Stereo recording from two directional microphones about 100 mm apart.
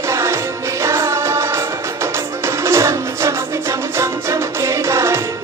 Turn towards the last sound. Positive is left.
turn(degrees=-25)  # may be behind; listen again after turning